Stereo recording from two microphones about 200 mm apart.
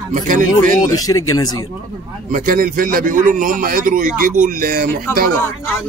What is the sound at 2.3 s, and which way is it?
A man's voice, 45° right (ahead or behind).